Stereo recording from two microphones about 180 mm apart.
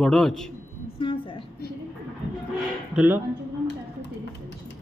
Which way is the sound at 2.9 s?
10° right (ahead or behind).